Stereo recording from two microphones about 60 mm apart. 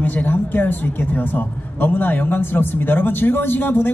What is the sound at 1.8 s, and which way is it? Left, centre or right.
A man's voice, left.